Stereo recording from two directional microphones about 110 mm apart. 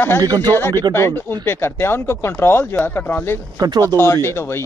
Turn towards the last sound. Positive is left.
turn(degrees=20)  # may be behind; listen again after turning